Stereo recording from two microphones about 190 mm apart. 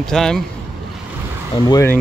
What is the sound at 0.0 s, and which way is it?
Speech, 5° left (ahead or behind).